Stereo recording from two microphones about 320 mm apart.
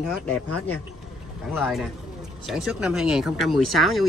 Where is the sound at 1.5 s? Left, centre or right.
Centre.